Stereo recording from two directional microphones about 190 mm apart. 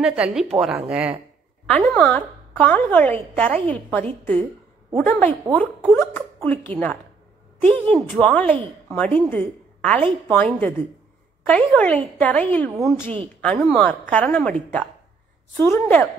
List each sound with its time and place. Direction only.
0.0 s speech: 5° right (ahead or behind)
1.7 s a woman's voice: 10° left (ahead or behind)